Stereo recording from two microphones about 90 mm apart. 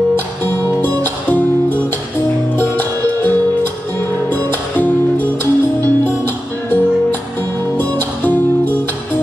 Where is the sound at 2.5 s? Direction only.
25° left (ahead or behind).